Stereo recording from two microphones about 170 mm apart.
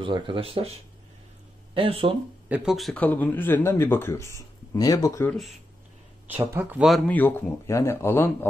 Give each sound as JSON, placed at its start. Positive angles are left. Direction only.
{"t": 0.0, "sound": "speech", "side_deg": -30}
{"t": 2.4, "sound": "speech", "side_deg": -5}
{"t": 6.2, "sound": "speech", "side_deg": -10}
{"t": 6.9, "sound": "speech", "side_deg": 10}